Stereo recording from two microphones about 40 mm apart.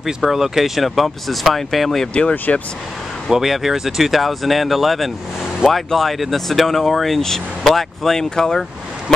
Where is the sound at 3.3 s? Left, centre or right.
Centre.